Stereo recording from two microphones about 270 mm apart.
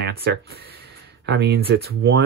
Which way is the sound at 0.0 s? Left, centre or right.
Right.